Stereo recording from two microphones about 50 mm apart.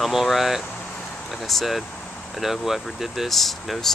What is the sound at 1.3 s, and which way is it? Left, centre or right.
Speech, centre.